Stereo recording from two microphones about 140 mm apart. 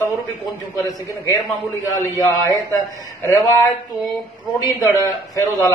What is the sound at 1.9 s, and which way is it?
A man's voice, 25° left (ahead or behind).